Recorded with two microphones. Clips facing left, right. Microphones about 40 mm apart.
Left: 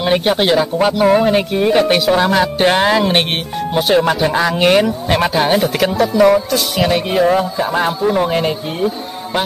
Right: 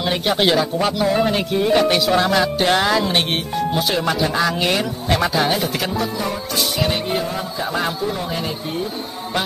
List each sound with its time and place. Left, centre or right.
0.0 s speech: left
0.4 s music: centre
0.7 s speech: left
1.2 s music: centre
2.4 s speech: left
6.1 s speech: left
7.7 s speech: left
8.2 s speech: left